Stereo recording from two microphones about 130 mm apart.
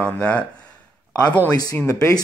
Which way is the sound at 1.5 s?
30° left (ahead or behind).